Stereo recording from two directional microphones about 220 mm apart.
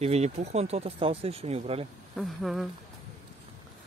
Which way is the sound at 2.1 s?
Centre (ahead or behind).